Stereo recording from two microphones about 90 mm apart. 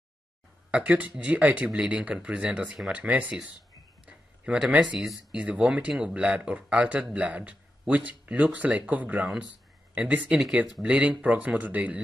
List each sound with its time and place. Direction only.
0.7 s a man's voice: 15° right (ahead or behind)
2.6 s speech: 5° right (ahead or behind)
2.9 s a man's voice: 15° right (ahead or behind)
4.0 s a sound: 10° right (ahead or behind)
5.4 s a man's voice: 15° right (ahead or behind)
10.4 s a man's voice: 5° right (ahead or behind)